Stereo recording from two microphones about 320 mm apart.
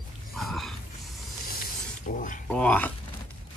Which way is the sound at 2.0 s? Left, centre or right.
Left.